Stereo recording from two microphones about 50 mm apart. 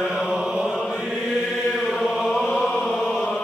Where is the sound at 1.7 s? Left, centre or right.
Centre.